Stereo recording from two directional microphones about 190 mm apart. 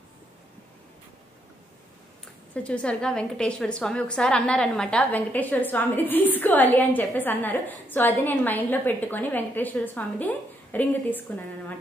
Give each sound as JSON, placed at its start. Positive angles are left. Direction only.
{"t": 2.5, "sound": "a woman's voice", "side_deg": 5}